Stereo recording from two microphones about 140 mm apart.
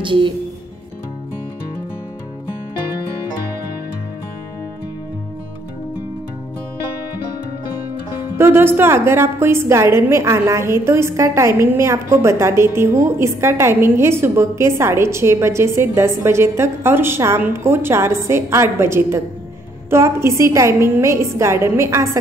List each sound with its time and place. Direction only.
0.0 s speech: 35° right (ahead or behind)
8.4 s a woman's voice: 15° right (ahead or behind)